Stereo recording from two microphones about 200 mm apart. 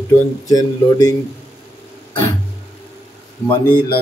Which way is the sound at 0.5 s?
20° left (ahead or behind).